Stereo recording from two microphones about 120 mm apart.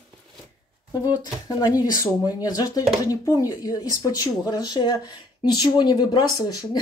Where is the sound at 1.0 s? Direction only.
35° left (ahead or behind).